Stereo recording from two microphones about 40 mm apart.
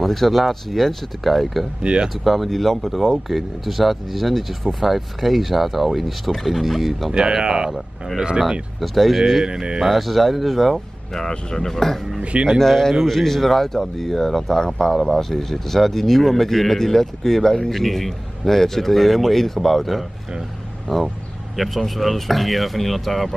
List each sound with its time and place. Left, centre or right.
0.0 s a man's voice: centre
1.8 s speech: right
2.2 s a man's voice: centre
7.1 s speech: centre
8.8 s a man's voice: centre
9.4 s speech: right
9.8 s a man's voice: centre
11.1 s speech: centre
12.2 s speech: right
12.5 s a man's voice: centre